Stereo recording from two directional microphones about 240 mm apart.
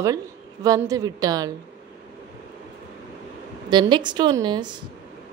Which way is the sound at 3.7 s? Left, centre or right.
Centre.